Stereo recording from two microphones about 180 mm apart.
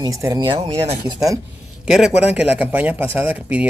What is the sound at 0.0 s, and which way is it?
Speech, 20° right (ahead or behind).